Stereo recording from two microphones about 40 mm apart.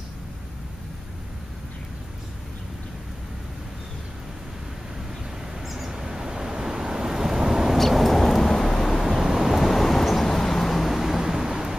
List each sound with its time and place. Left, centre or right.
5.7 s a sound: centre
5.9 s vehicle: centre
7.7 s vehicle: centre
9.0 s vehicle: centre